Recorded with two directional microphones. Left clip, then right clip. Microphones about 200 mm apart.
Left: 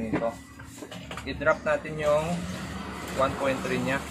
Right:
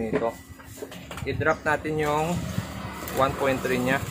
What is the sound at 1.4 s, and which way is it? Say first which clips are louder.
Speech: even; 60° right (ahead or behind).